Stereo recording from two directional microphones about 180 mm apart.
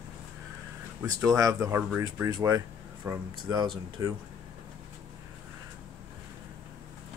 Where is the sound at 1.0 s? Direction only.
20° right (ahead or behind).